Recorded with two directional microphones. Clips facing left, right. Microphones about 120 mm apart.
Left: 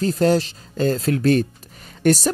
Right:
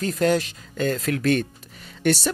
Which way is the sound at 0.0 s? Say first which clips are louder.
Left 3 dB; 30° left (ahead or behind).